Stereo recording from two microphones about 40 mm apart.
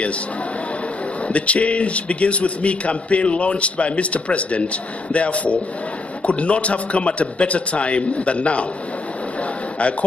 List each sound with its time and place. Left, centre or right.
1.3 s a man's voice: left